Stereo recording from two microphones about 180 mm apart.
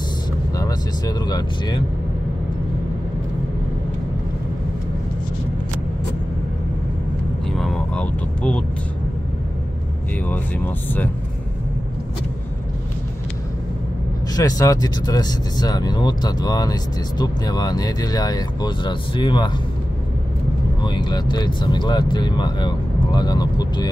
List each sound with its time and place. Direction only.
0.6 s speech: 20° left (ahead or behind)
7.5 s vehicle: centre (ahead or behind)
10.2 s speech: 10° left (ahead or behind)
14.3 s speech: 20° left (ahead or behind)
20.8 s speech: 25° left (ahead or behind)